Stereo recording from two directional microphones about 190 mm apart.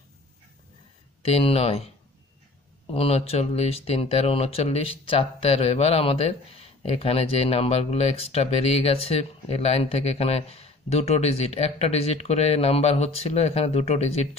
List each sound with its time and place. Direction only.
1.2 s speech: 30° left (ahead or behind)
2.9 s speech: 30° left (ahead or behind)